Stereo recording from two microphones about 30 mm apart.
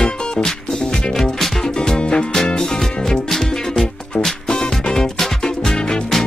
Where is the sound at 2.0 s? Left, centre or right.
Left.